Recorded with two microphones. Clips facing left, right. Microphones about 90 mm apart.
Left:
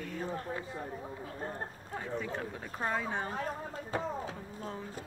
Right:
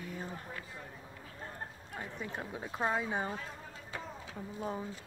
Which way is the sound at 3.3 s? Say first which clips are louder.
Left 5 dB; 45° left (ahead or behind).